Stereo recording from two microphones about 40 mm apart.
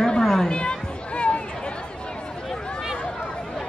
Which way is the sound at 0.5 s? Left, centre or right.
Left.